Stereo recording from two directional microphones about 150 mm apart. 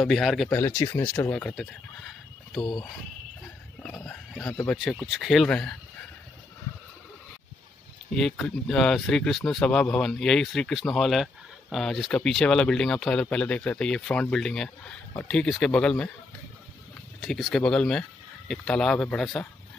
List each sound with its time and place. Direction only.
0.0 s speech: centre (ahead or behind)
0.5 s speech: 15° left (ahead or behind)
3.8 s speech: 10° left (ahead or behind)
8.1 s speech: 5° left (ahead or behind)
17.2 s speech: centre (ahead or behind)